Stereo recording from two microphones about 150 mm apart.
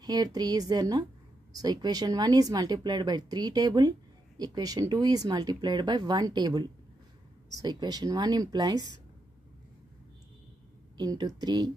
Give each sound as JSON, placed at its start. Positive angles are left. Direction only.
{"t": 0.0, "sound": "speech", "side_deg": -25}
{"t": 11.0, "sound": "speech", "side_deg": -25}